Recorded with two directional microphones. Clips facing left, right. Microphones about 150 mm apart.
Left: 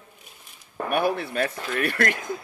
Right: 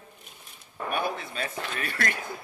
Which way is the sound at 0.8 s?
65° left (ahead or behind).